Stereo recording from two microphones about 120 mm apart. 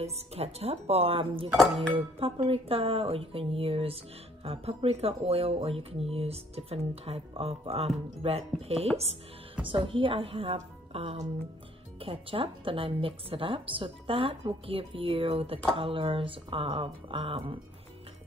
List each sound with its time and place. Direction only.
0.0 s speech: 60° right (ahead or behind)
9.7 s speech: 45° right (ahead or behind)